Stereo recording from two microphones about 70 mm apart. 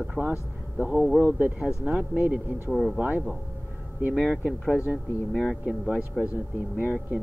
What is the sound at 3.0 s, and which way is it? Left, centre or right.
Speech, right.